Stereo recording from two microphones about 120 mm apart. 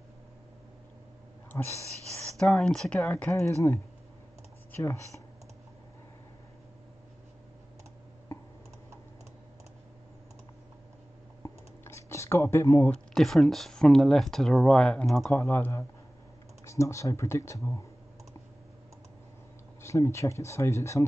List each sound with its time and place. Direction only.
1.7 s speech: 25° right (ahead or behind)
2.3 s speech: 5° left (ahead or behind); by 5.0 s 20° left (ahead or behind)
11.4 s computer keyboard: 25° left (ahead or behind)
13.1 s speech: centre (ahead or behind)
15.3 s speech: 20° left (ahead or behind)
19.8 s speech: 25° left (ahead or behind)